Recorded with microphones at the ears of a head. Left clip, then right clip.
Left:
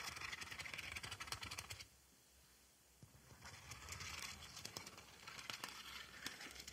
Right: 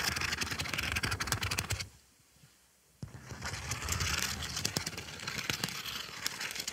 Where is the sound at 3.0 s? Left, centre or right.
Right.